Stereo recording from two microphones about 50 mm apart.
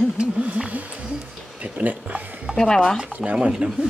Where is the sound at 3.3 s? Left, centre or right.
Centre.